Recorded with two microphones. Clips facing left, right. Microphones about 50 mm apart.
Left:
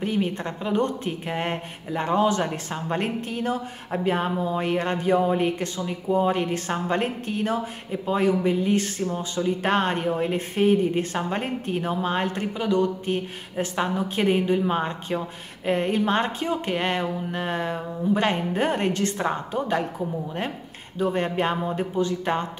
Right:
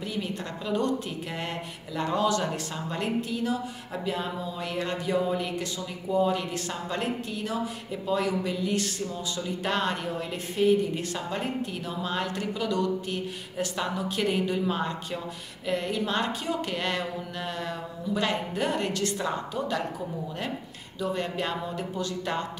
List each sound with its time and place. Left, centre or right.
0.0 s a woman's voice: left
21.0 s a woman's voice: left